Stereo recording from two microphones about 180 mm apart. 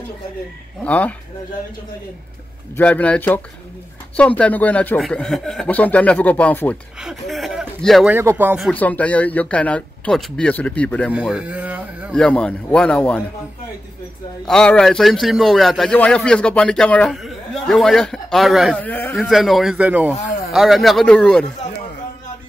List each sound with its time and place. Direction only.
0.8 s speech: 10° left (ahead or behind)
2.7 s speech: 10° left (ahead or behind)
7.0 s a sound: centre (ahead or behind)
7.8 s a man's voice: centre (ahead or behind)
8.1 s speech: 10° right (ahead or behind)
8.6 s speech: 10° left (ahead or behind)
11.1 s speech: 5° right (ahead or behind)
12.1 s a man's voice: 5° left (ahead or behind)
14.4 s a man's voice: 5° left (ahead or behind)
19.1 s a man's voice: centre (ahead or behind)